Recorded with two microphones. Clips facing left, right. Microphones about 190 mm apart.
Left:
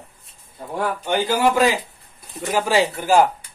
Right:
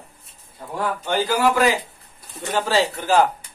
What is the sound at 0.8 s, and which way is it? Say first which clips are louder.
A man's voice: left 1 dB; 15° left (ahead or behind).